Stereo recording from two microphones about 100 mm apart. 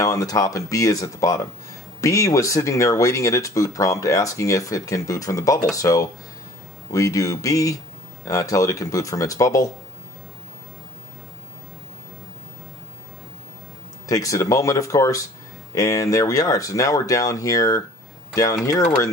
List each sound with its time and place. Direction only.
0.0 s speech: 35° left (ahead or behind)
14.0 s speech: 35° left (ahead or behind)